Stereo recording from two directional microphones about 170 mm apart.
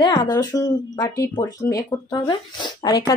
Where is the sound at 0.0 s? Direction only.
25° left (ahead or behind).